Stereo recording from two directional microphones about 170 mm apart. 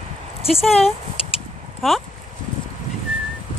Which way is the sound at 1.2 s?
35° left (ahead or behind).